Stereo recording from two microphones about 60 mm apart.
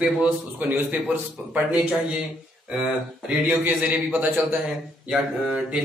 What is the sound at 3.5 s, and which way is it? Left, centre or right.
Speech, right.